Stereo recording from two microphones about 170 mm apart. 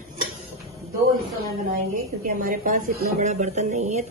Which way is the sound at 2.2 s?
50° right (ahead or behind).